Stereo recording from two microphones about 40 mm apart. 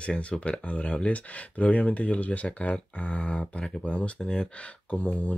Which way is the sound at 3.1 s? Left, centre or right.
Left.